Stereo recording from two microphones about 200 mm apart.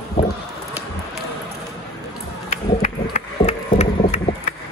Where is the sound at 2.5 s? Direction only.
40° left (ahead or behind).